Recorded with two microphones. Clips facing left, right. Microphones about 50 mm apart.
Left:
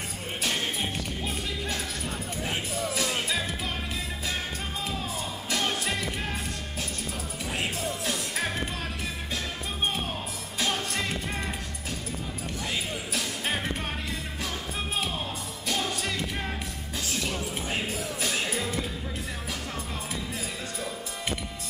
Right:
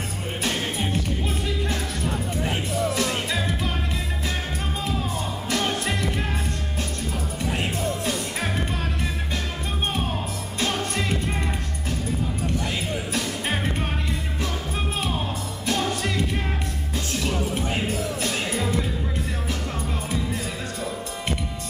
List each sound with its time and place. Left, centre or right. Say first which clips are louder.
0.4 s music: right 3 dB; centre
5.5 s music: right 3 dB; centre
7.4 s music: right 4 dB; centre
10.6 s music: right 3 dB; centre
15.0 s music: right 4 dB; centre